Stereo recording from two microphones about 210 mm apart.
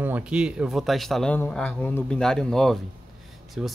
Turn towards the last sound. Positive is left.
turn(degrees=-5)  # may be behind; listen again after turning